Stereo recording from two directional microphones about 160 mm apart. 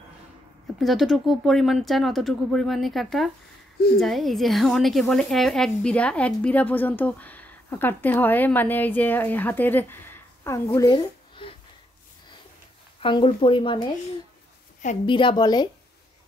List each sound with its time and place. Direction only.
0.7 s a woman's voice: centre (ahead or behind); by 11.5 s 30° left (ahead or behind)
13.0 s speech: 35° left (ahead or behind)
15.0 s a woman's voice: 30° left (ahead or behind)